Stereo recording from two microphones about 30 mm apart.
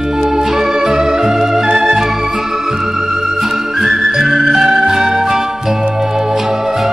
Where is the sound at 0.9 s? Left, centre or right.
Centre.